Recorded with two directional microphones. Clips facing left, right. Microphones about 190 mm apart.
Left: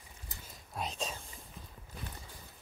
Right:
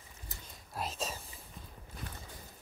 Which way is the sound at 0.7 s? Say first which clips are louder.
Even; 5° right (ahead or behind).